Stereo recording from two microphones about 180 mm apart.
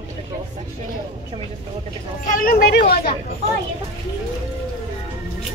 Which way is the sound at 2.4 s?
60° left (ahead or behind).